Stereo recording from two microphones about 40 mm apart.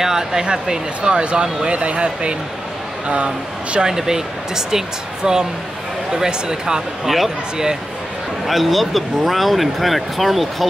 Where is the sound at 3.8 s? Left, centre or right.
Centre.